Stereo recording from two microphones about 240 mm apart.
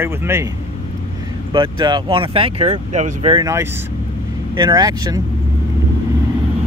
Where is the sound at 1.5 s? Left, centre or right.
Centre.